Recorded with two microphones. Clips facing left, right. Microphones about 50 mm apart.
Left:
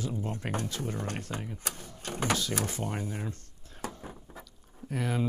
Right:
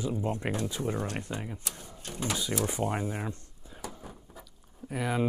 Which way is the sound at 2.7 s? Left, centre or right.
Right.